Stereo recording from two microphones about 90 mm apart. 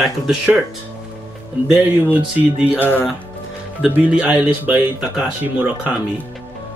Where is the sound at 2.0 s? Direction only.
20° right (ahead or behind).